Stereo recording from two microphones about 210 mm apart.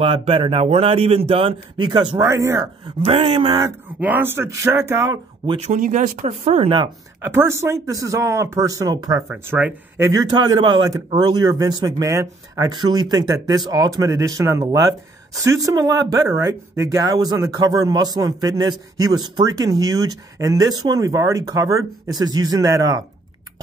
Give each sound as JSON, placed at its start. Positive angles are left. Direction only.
{"t": 0.0, "sound": "speech", "side_deg": -25}
{"t": 3.0, "sound": "speech", "side_deg": -25}
{"t": 5.6, "sound": "speech", "side_deg": -35}
{"t": 7.2, "sound": "speech", "side_deg": -10}
{"t": 9.3, "sound": "speech", "side_deg": -10}